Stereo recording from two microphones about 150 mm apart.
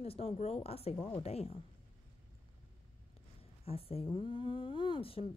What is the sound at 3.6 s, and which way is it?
Speech, 40° left (ahead or behind).